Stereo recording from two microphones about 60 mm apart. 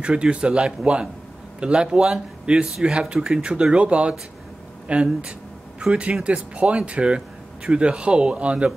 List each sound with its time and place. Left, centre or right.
0.0 s speech: centre